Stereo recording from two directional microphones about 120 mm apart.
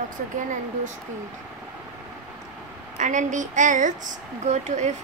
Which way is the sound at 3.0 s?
90° right.